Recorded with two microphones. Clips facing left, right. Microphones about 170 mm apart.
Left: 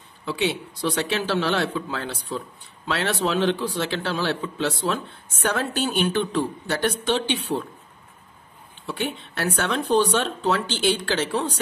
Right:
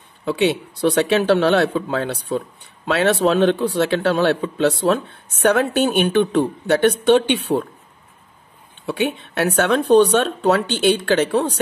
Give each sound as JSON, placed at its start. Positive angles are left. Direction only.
{"t": 0.2, "sound": "speech", "side_deg": -60}
{"t": 8.8, "sound": "speech", "side_deg": -60}